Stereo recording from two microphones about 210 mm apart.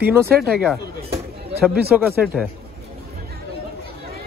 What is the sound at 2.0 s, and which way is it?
Speech, 5° right (ahead or behind).